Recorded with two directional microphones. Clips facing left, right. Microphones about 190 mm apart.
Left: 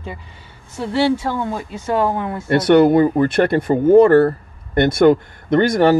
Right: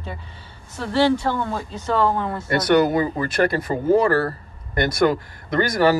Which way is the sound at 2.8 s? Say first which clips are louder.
Left 8 dB; 55° left (ahead or behind).